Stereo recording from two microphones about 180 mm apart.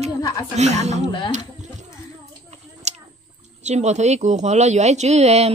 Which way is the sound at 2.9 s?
40° right (ahead or behind).